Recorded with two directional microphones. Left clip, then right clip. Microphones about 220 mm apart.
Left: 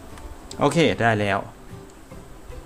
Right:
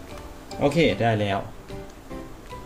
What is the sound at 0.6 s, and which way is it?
Speech, 35° left (ahead or behind).